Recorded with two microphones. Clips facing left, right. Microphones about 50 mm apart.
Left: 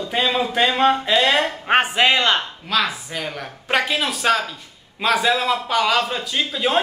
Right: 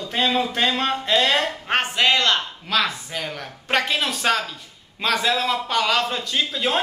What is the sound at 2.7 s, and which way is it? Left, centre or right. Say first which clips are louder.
A man's voice: left 1 dB; centre.